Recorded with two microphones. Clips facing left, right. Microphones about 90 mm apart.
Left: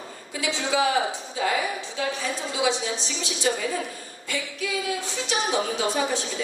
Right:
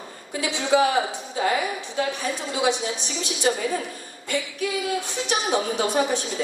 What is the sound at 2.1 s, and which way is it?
Speech, 55° right (ahead or behind).